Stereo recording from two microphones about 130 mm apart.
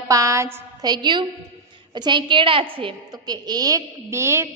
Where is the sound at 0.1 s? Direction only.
25° right (ahead or behind).